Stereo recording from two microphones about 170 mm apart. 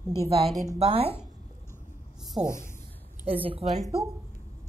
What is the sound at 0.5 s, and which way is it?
Speech, 20° right (ahead or behind).